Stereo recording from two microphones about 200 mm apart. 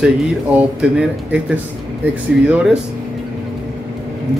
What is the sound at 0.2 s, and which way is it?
Speech, 5° right (ahead or behind).